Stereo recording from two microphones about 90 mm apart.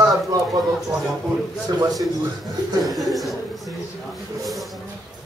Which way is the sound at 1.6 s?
45° right (ahead or behind).